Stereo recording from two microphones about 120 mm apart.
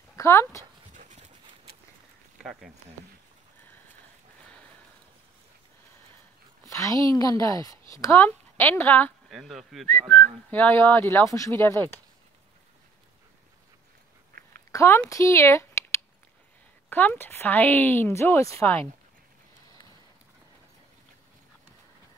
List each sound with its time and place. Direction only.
0.1 s speech: 25° left (ahead or behind)
0.9 s horse: 85° right
2.3 s speech: centre (ahead or behind)
6.6 s a woman's voice: 25° left (ahead or behind)
9.3 s speech: centre (ahead or behind)
9.8 s speech: 10° left (ahead or behind)
14.7 s a woman's voice: 25° left (ahead or behind)